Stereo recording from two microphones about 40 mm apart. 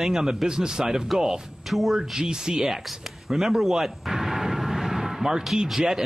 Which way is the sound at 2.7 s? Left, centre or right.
Centre.